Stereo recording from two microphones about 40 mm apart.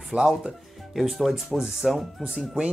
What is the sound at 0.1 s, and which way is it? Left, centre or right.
Speech, centre.